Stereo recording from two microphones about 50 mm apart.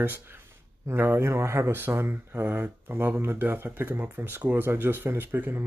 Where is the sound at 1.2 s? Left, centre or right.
Right.